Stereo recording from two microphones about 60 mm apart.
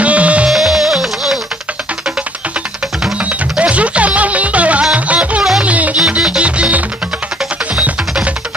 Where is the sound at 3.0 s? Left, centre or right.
Right.